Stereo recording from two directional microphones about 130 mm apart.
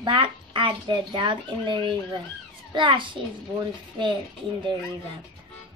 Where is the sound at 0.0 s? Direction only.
40° right (ahead or behind).